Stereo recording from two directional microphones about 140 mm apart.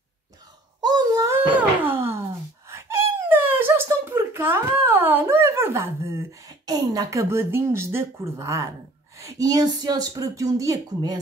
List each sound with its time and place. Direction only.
0.7 s a sound: 30° right (ahead or behind)
1.5 s wail: 15° right (ahead or behind)
9.2 s speech: 25° right (ahead or behind)